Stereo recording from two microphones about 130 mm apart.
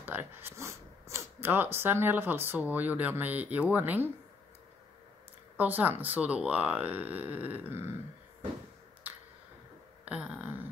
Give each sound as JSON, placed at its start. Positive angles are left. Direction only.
{"t": 0.0, "sound": "speech", "side_deg": -15}
{"t": 5.6, "sound": "speech", "side_deg": -15}
{"t": 10.0, "sound": "a sound", "side_deg": -10}